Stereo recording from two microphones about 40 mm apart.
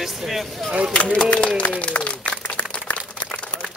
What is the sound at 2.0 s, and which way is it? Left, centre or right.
Applause, left.